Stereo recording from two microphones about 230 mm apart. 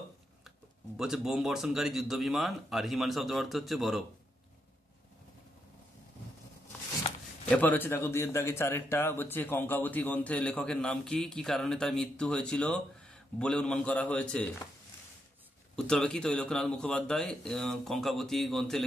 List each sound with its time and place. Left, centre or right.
0.9 s a man's voice: centre
7.4 s a man's voice: centre
15.7 s a man's voice: centre